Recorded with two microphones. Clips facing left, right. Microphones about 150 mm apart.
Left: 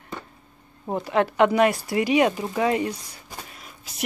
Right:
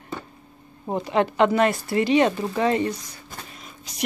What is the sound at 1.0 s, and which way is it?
Speech, 5° left (ahead or behind).